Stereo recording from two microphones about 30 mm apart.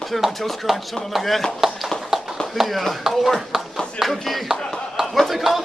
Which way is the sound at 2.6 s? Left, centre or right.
Centre.